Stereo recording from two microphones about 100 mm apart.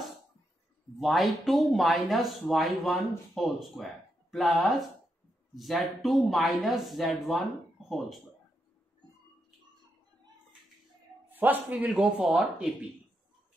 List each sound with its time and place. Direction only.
0.9 s speech: centre (ahead or behind)
11.2 s a man's voice: 20° right (ahead or behind)
11.9 s speech: 5° right (ahead or behind)